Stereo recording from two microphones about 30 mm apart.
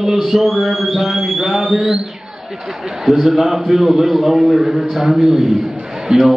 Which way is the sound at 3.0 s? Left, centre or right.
Centre.